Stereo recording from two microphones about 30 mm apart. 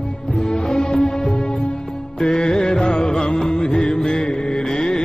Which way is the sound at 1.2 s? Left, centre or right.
Left.